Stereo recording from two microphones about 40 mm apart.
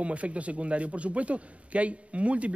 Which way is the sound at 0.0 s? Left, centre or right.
Right.